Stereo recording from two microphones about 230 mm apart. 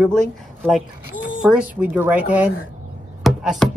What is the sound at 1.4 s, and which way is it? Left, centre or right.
Chopping, centre.